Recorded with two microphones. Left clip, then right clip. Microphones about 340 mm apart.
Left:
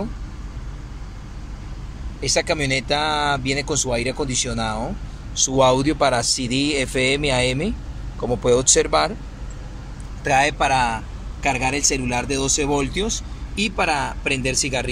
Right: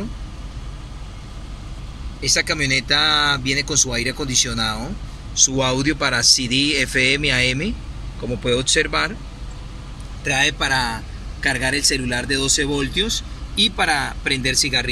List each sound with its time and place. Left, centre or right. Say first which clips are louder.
2.2 s speech: right 1 dB; centre
10.2 s speech: left 1 dB; centre